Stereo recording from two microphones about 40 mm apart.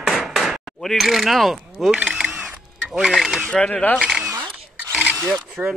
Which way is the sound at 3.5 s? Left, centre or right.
Left.